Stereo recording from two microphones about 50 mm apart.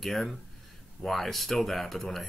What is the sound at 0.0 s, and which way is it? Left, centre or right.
Speech, centre.